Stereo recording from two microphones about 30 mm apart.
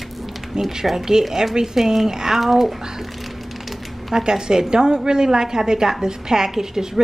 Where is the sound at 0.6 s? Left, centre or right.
Centre.